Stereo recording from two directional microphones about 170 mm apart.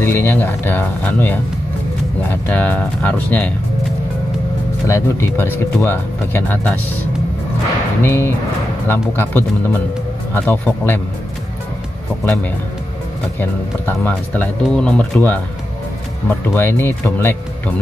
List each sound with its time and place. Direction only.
0.0 s speech: 10° left (ahead or behind)
4.8 s speech: 15° left (ahead or behind)
8.0 s speech: 15° left (ahead or behind)
12.3 s speech: 10° left (ahead or behind)
16.5 s speech: 10° left (ahead or behind)